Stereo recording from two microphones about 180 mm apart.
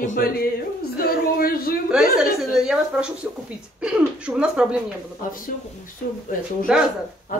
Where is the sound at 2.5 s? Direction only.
5° right (ahead or behind).